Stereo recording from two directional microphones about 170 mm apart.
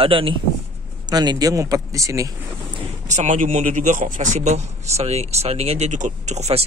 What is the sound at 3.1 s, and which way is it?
A man's voice, 45° right (ahead or behind).